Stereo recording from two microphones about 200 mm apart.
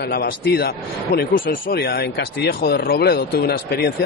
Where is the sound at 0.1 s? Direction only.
50° left (ahead or behind).